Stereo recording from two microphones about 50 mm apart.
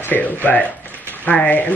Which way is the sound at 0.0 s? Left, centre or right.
Left.